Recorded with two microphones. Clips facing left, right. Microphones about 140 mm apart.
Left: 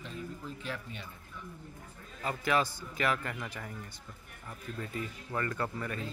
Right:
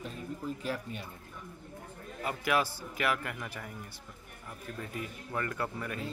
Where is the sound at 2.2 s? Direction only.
10° right (ahead or behind).